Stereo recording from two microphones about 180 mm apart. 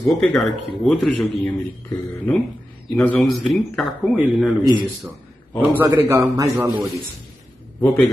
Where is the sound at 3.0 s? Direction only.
5° left (ahead or behind).